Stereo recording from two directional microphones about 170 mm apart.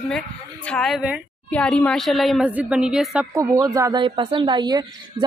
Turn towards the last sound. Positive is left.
turn(degrees=-25)  # may be behind; listen again after turning